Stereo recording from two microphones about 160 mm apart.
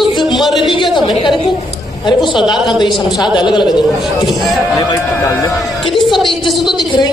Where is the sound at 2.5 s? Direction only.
Centre (ahead or behind).